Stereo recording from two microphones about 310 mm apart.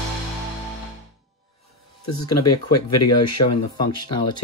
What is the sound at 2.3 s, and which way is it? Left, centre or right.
Speech, left.